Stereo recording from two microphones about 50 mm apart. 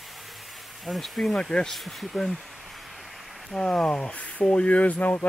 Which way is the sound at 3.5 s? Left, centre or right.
Centre.